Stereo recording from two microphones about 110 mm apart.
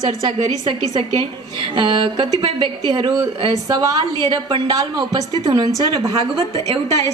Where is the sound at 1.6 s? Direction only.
45° right (ahead or behind).